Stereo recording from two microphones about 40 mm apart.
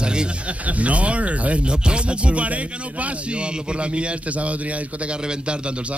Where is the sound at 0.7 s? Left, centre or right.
Right.